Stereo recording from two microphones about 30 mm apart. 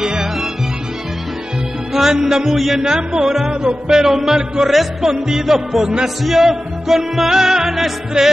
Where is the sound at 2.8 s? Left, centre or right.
Right.